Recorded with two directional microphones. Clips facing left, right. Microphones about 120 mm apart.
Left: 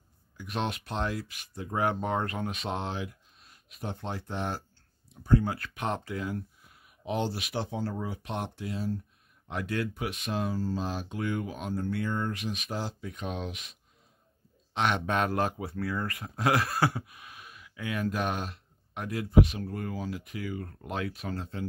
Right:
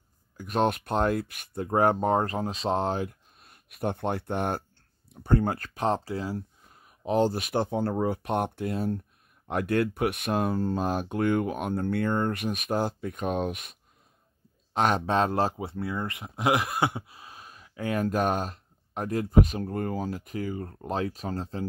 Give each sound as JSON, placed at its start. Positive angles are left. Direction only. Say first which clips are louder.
{"t": 0.4, "sound": "speech", "louder": "right 8 dB", "side_deg": -45}
{"t": 14.7, "sound": "speech", "louder": "right 4 dB", "side_deg": -40}